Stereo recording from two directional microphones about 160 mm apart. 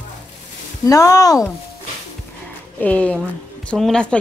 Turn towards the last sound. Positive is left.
turn(degrees=5)  # may be behind; listen again after turning